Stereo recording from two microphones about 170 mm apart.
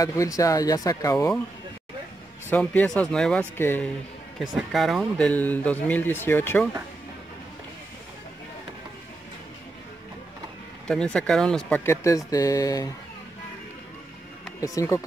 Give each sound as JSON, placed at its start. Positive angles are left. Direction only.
{"t": 0.0, "sound": "speech", "side_deg": 20}
{"t": 2.5, "sound": "speech", "side_deg": 10}
{"t": 4.4, "sound": "speech", "side_deg": 0}
{"t": 10.9, "sound": "speech", "side_deg": 5}
{"t": 11.8, "sound": "speech", "side_deg": 15}
{"t": 14.6, "sound": "speech", "side_deg": 20}